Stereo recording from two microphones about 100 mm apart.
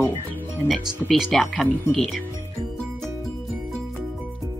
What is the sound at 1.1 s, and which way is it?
Speech, centre (ahead or behind).